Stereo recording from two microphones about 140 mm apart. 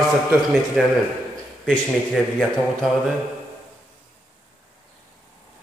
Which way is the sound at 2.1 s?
Centre (ahead or behind).